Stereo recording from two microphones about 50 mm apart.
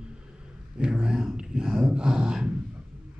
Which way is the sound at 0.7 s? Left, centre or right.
Centre.